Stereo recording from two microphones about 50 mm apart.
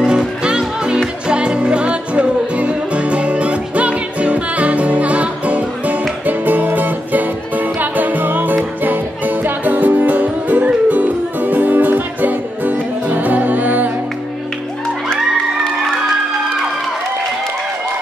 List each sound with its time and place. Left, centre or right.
0.0 s music: centre; by 13.8 s right